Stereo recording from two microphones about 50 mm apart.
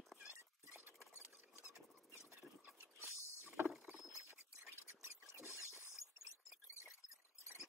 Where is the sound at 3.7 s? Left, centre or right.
Centre.